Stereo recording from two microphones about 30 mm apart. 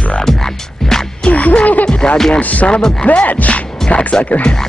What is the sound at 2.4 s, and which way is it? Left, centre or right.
Music, left.